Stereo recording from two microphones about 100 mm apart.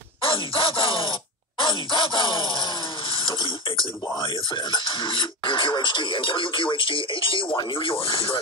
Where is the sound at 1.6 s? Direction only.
55° left (ahead or behind).